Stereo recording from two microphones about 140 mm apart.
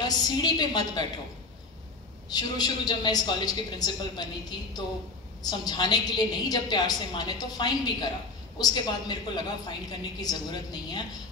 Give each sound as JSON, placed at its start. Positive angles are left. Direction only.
{"t": 0.0, "sound": "a woman's voice", "side_deg": 30}
{"t": 2.3, "sound": "a woman's voice", "side_deg": 30}